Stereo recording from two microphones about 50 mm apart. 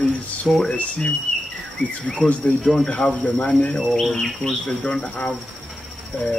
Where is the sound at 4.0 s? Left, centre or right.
Centre.